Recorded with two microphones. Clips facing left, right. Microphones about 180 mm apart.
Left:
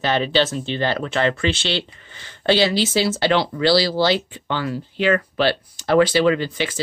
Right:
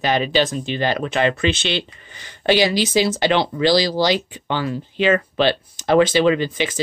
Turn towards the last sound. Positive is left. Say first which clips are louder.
# right 1 dB
turn(degrees=-20)  # may be behind; listen again after turning